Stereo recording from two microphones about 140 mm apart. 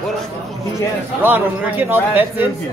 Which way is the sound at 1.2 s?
15° right (ahead or behind).